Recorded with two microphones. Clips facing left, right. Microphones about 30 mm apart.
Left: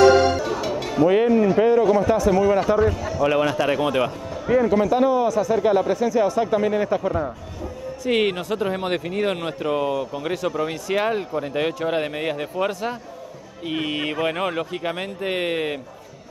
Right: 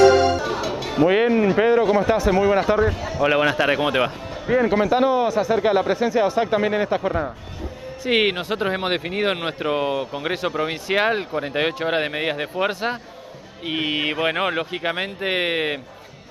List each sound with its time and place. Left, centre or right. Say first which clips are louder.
0.1 s music: even; centre
0.4 s a man's voice: even; right